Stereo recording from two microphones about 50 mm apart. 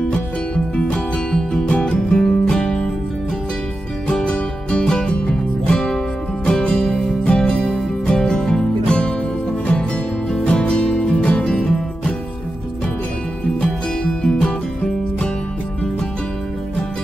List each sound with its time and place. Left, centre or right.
0.7 s music: left
4.1 s music: centre
10.4 s music: left
13.6 s music: centre